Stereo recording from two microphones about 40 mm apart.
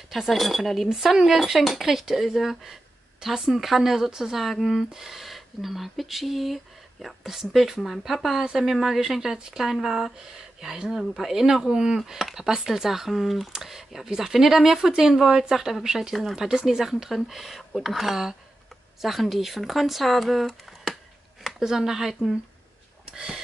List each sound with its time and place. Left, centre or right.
0.1 s speech: centre
0.8 s speech: centre
4.9 s speech: centre